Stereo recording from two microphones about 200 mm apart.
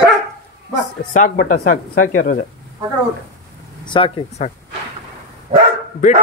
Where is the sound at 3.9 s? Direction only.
30° left (ahead or behind).